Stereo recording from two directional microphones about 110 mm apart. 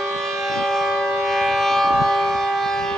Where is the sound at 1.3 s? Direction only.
Centre (ahead or behind).